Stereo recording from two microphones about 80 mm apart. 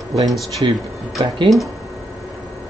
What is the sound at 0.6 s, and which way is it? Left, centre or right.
Speech, right.